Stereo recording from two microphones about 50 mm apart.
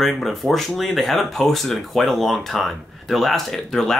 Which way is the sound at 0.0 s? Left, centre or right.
Centre.